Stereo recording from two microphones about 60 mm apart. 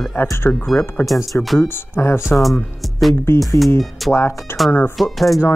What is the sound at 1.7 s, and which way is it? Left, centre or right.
Speech, left.